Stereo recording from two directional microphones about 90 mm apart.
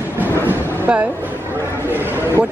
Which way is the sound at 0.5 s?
15° right (ahead or behind).